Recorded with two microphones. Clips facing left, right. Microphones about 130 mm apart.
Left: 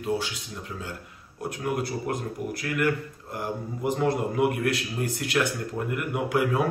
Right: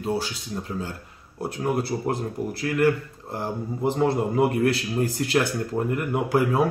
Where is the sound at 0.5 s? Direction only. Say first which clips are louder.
Right 5 dB; 40° right (ahead or behind).